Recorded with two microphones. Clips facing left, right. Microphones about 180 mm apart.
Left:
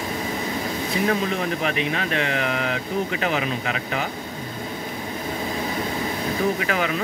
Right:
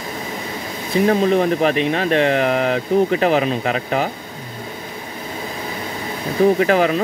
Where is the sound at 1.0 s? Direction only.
35° right (ahead or behind).